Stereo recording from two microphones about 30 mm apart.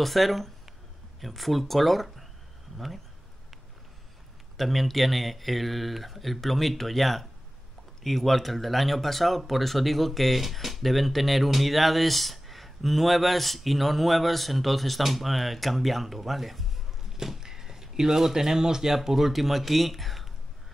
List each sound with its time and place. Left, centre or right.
0.0 s speech: centre
4.6 s speech: centre
17.2 s speech: centre
19.0 s speech: centre